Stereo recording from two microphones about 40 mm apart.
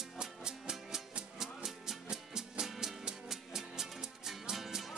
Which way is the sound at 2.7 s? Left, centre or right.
Centre.